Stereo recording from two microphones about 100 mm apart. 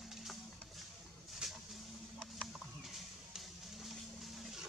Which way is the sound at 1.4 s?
5° right (ahead or behind).